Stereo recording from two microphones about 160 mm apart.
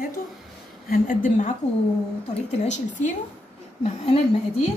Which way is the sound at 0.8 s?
60° left (ahead or behind).